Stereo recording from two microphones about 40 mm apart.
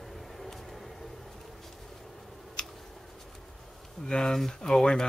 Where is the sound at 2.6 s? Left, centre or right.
Left.